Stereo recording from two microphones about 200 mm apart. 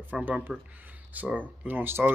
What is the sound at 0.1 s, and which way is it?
Speech, 5° right (ahead or behind).